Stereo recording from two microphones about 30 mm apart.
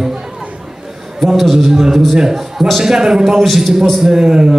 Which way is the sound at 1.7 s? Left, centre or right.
Centre.